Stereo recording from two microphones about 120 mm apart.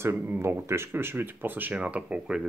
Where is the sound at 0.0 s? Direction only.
20° right (ahead or behind).